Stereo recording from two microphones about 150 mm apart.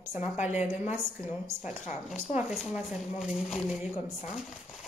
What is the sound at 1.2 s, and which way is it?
Speech, 55° left (ahead or behind).